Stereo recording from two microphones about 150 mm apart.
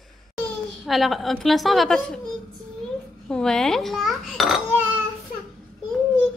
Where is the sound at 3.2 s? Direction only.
5° left (ahead or behind).